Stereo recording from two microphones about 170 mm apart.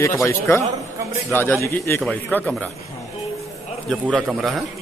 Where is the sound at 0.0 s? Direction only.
15° left (ahead or behind).